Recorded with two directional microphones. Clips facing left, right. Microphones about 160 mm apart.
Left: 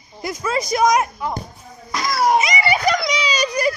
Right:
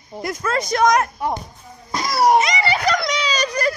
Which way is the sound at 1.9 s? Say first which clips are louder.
Right 2 dB; 35° right (ahead or behind).